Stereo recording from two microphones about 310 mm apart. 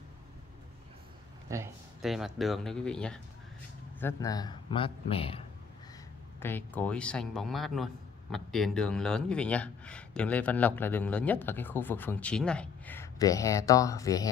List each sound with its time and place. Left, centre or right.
1.5 s a man's voice: centre
6.4 s a man's voice: centre